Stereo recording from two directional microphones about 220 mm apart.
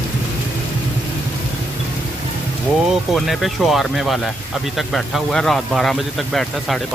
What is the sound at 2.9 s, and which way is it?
Speech, centre (ahead or behind).